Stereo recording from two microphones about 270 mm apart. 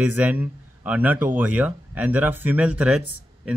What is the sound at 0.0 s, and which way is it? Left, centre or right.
Speech, centre.